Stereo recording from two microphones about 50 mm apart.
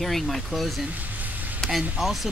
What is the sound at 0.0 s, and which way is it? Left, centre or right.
Speech, centre.